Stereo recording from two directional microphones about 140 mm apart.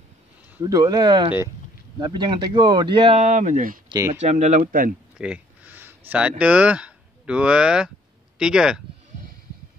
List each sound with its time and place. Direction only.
0.7 s speech: 25° right (ahead or behind)
3.2 s speech: 60° right (ahead or behind)
4.1 s speech: 55° right (ahead or behind); by 4.9 s 70° right (ahead or behind)
5.2 s speech: 10° right (ahead or behind)